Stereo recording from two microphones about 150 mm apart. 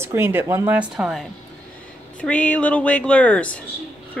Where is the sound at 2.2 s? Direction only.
10° left (ahead or behind).